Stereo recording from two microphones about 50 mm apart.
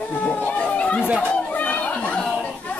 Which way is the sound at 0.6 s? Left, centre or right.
Left.